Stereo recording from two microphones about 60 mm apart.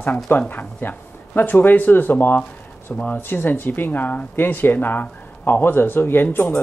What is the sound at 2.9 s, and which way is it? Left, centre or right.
Speech, centre.